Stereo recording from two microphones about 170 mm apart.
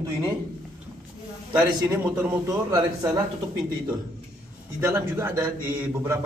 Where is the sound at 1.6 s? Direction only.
10° right (ahead or behind).